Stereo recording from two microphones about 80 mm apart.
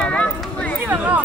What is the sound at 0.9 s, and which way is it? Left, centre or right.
Chatter, centre.